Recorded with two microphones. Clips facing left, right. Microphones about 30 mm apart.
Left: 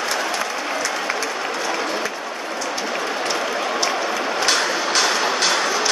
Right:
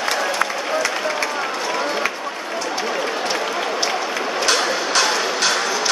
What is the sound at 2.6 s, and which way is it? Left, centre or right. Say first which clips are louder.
Applause: right 2 dB; right.